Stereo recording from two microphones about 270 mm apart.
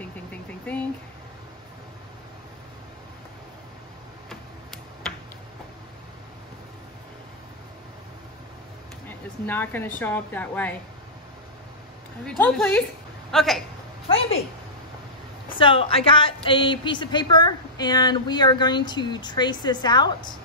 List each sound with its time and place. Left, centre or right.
0.0 s vehicle: centre
9.5 s a woman's voice: centre
12.3 s speech: centre
14.0 s a sound: left
15.5 s a woman's voice: centre